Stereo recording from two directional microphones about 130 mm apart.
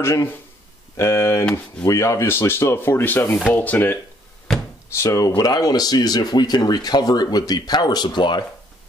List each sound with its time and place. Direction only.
0.0 s speech: 20° left (ahead or behind)